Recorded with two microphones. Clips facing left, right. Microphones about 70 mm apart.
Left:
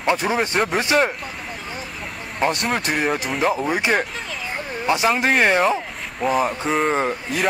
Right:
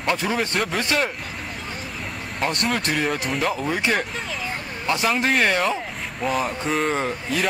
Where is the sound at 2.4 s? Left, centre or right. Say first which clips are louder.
Left 4 dB; centre.